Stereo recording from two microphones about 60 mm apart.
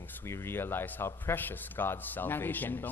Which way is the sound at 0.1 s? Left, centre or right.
Left.